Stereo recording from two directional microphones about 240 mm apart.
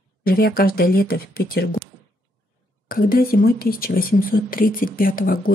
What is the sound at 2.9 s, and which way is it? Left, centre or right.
Speech, left.